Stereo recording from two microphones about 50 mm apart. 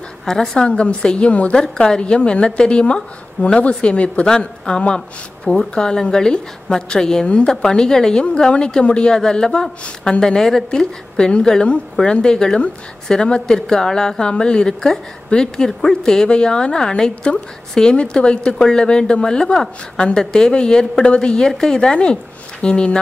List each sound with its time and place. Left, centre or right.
0.2 s a woman's voice: centre
0.7 s a woman's voice: left
1.6 s a woman's voice: centre